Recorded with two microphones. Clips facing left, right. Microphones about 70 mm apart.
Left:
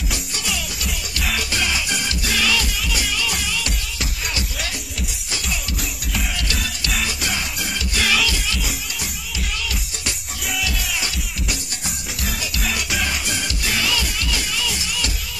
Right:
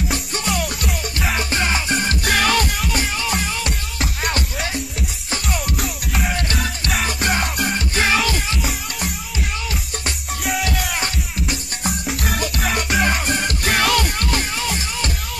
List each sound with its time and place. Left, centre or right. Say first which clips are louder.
0.1 s music: right 5 dB; right
1.2 s music: right 2 dB; right
4.0 s music: right 7 dB; right
6.2 s music: right 6 dB; right